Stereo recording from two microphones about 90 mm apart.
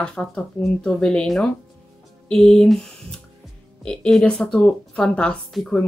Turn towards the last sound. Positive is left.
turn(degrees=0)  # may be behind; listen again after turning